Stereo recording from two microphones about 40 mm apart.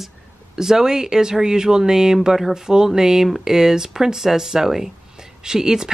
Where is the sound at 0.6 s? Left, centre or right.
Centre.